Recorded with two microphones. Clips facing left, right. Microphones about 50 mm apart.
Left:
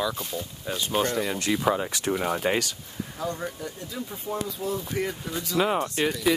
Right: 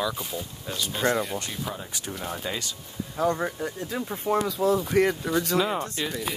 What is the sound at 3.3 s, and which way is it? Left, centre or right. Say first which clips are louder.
Speech: right 4 dB; right.